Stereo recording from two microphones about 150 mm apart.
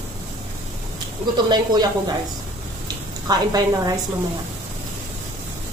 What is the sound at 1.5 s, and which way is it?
Speech, 25° right (ahead or behind).